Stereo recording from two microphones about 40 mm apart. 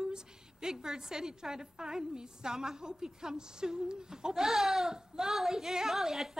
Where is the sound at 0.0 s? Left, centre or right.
Centre.